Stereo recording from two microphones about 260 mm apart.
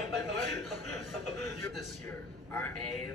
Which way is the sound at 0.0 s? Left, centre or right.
Left.